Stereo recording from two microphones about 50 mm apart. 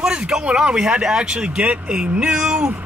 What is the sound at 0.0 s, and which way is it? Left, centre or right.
Speech, centre.